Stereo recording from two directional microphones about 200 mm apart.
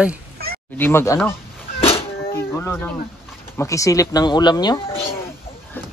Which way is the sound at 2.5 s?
10° left (ahead or behind).